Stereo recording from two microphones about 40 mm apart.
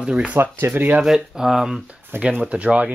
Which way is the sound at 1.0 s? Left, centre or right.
Centre.